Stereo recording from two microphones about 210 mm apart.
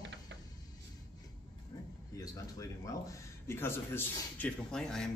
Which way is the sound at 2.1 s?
15° left (ahead or behind).